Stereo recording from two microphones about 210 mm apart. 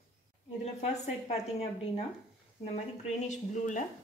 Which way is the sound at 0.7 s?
30° left (ahead or behind).